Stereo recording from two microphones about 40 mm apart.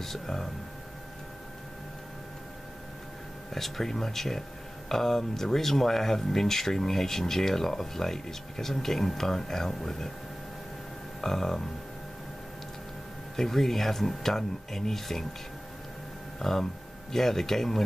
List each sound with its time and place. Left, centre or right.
0.0 s speech: centre
3.5 s speech: centre
11.1 s speech: centre
13.4 s speech: centre
16.3 s speech: centre